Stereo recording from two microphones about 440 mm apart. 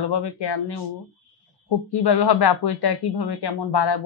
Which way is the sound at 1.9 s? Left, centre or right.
Left.